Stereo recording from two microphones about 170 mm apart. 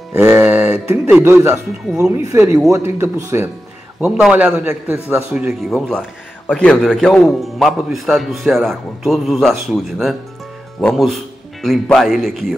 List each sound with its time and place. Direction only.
0.1 s music: 15° right (ahead or behind)
1.2 s a man's voice: 15° right (ahead or behind)
4.0 s a man's voice: 5° right (ahead or behind)